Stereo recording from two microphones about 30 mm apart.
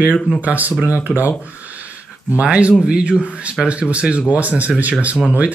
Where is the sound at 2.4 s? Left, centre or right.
Right.